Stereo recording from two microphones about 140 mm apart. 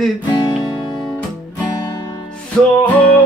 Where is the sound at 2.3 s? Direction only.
5° left (ahead or behind).